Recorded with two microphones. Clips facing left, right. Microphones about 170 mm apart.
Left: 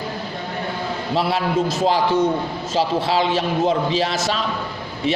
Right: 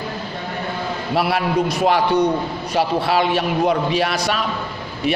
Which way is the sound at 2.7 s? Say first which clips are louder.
Right 1 dB; 25° left (ahead or behind).